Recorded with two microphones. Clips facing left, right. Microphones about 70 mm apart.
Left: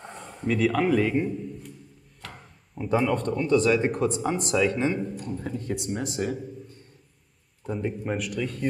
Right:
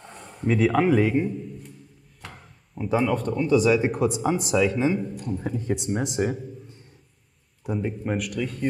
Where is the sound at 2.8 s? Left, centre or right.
Centre.